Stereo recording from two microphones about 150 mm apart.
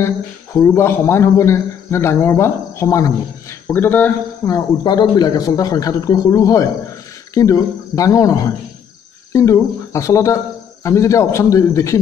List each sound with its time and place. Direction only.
0.0 s a man's voice: 15° left (ahead or behind)
4.5 s speech: 25° left (ahead or behind)